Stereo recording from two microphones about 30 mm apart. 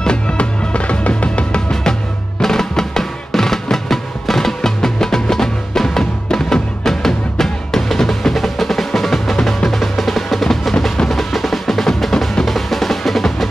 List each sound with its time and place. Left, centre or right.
0.0 s music: left
0.7 s music: left
2.4 s music: centre
11.1 s percussion: centre
11.8 s drum: centre